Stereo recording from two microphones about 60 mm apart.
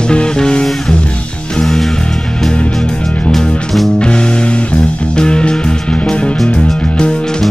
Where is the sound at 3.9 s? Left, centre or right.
Centre.